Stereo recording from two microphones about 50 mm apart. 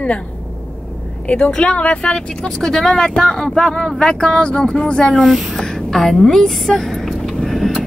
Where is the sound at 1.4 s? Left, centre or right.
Centre.